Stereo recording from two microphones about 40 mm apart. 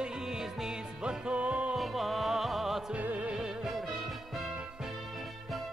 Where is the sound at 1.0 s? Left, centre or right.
Right.